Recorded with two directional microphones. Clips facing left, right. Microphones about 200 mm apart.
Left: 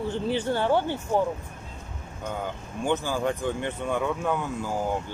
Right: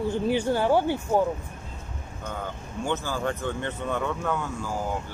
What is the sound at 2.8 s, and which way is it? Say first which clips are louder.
Speech: left 2 dB; 15° left (ahead or behind).